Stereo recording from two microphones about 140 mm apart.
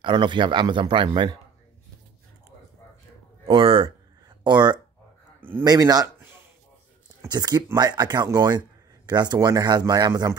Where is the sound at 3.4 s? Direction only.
40° right (ahead or behind).